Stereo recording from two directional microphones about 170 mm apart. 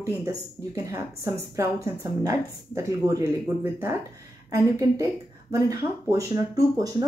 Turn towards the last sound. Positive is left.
turn(degrees=-20)  # may be behind; listen again after turning